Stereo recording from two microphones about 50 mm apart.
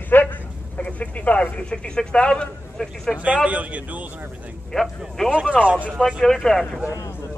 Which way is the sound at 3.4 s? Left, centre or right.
Right.